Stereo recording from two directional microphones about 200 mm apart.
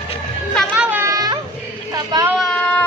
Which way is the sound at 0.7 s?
10° right (ahead or behind).